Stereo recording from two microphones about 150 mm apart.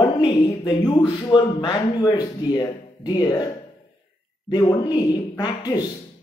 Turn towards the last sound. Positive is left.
turn(degrees=30)  # may be behind; listen again after turning